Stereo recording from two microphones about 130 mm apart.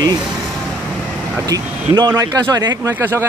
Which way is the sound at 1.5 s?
30° right (ahead or behind).